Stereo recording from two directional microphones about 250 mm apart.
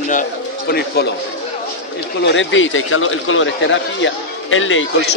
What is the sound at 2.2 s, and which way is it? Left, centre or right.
A man's voice, left.